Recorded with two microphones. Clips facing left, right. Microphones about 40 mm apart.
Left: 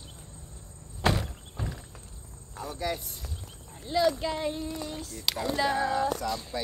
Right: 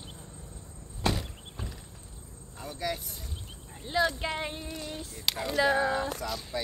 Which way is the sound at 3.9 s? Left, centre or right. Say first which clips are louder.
Left 2 dB; right.